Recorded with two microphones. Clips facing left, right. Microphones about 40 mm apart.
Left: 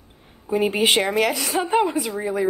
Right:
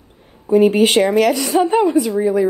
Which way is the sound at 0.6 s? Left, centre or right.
Centre.